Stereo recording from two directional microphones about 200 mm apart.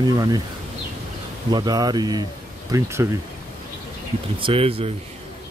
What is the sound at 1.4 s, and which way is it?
Speech, 20° right (ahead or behind).